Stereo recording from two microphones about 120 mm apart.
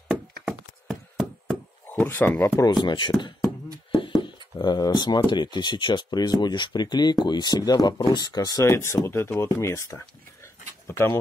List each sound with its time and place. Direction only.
0.1 s a sound: centre (ahead or behind)
1.9 s speech: 15° left (ahead or behind)
2.7 s speech: 40° left (ahead or behind)
4.6 s speech: 35° left (ahead or behind); by 11.1 s 20° left (ahead or behind)